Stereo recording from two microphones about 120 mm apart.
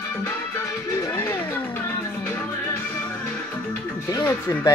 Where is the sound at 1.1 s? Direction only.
20° left (ahead or behind).